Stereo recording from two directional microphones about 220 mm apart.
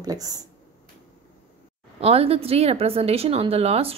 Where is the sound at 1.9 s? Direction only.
25° right (ahead or behind).